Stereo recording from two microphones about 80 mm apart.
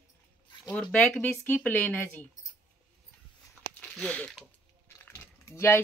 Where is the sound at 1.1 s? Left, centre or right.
Centre.